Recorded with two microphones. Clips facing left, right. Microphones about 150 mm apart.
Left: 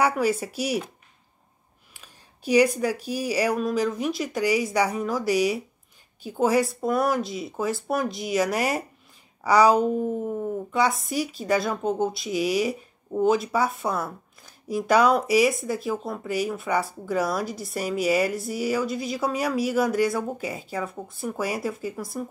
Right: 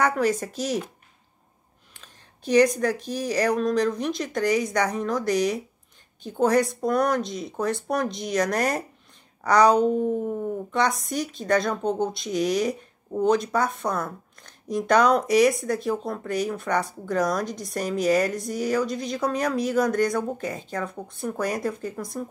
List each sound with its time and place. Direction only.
0.0 s speech: 10° left (ahead or behind)
2.0 s a woman's voice: 10° left (ahead or behind)